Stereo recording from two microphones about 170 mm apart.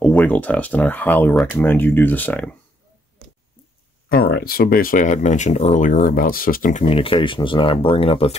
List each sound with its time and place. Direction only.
0.0 s speech: 10° left (ahead or behind)
1.7 s speech: 10° left (ahead or behind)
4.1 s speech: 65° left (ahead or behind)
6.9 s speech: 30° left (ahead or behind)